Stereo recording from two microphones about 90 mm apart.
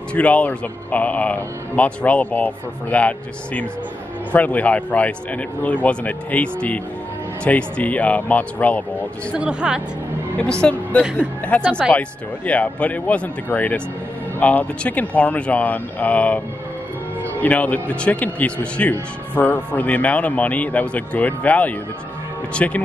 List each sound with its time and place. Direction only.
0.1 s speech: 15° left (ahead or behind)
9.4 s speech: 10° right (ahead or behind)
10.6 s a woman's voice: 15° left (ahead or behind)